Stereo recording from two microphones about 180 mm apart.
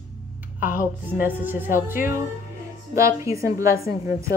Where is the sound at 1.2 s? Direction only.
10° right (ahead or behind).